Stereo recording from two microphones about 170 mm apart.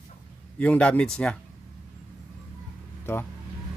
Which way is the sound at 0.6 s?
5° left (ahead or behind).